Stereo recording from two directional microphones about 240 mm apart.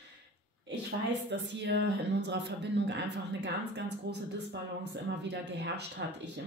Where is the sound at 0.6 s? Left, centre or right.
Right.